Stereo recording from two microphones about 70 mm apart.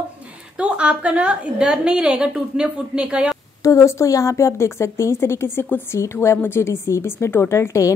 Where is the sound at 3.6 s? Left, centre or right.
Left.